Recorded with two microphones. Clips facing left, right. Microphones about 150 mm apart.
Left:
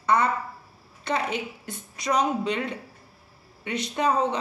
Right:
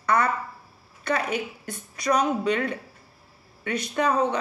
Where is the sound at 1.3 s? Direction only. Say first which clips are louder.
Right 2 dB; 25° left (ahead or behind).